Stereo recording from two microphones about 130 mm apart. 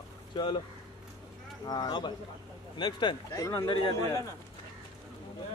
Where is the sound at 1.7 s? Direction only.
35° left (ahead or behind).